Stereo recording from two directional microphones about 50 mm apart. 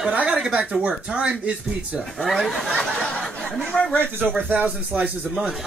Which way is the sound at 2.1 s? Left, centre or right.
Centre.